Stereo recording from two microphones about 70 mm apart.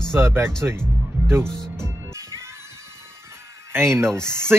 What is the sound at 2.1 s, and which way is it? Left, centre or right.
Music, right.